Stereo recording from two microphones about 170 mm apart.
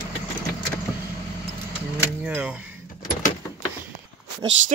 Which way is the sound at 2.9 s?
50° left (ahead or behind).